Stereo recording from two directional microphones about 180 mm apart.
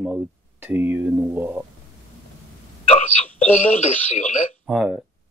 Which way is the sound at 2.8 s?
40° left (ahead or behind).